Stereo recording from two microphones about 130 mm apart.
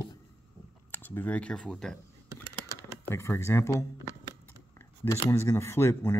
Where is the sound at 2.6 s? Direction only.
20° left (ahead or behind).